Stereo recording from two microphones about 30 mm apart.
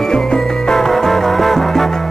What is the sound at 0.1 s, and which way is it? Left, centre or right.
Music, left.